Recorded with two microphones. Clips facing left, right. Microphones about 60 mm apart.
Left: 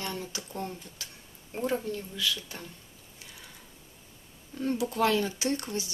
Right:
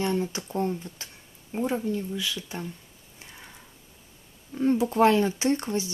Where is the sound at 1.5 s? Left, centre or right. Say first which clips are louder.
Right 3 dB; centre.